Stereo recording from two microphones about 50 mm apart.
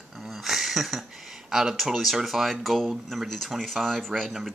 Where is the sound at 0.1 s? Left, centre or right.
Centre.